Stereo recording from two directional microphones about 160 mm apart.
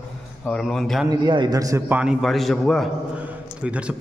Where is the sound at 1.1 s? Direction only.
25° right (ahead or behind); by 2.1 s 10° right (ahead or behind).